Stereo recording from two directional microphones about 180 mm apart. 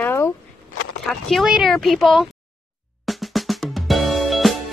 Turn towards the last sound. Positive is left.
turn(degrees=0)  # may be behind; listen again after turning